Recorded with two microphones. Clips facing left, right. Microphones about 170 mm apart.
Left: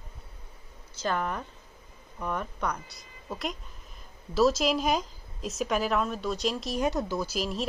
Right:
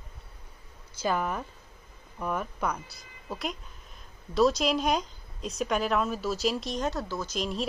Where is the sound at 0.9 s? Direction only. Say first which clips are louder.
Right 1 dB; 10° right (ahead or behind).